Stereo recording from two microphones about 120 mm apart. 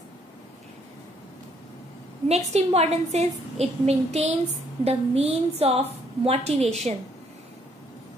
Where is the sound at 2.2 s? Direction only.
60° right (ahead or behind).